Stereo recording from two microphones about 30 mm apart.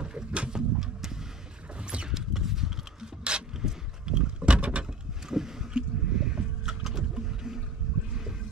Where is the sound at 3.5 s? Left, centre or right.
Centre.